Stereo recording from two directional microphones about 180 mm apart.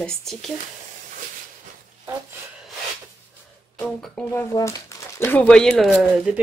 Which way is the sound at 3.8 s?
Centre (ahead or behind).